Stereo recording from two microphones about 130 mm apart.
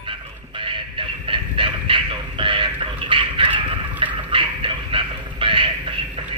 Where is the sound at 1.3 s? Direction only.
40° right (ahead or behind).